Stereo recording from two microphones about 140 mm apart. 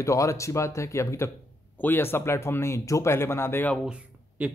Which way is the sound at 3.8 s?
10° right (ahead or behind).